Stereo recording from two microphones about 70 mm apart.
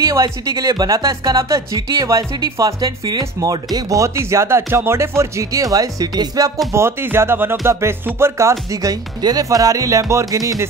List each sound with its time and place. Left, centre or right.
0.0 s speech: right
4.2 s speech: right
6.7 s music: right
9.2 s speech: right